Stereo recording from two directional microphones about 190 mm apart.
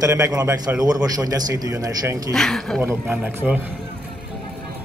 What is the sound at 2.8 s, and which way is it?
Speech, 10° right (ahead or behind).